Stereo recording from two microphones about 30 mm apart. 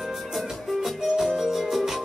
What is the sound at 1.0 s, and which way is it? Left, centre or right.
Music, centre.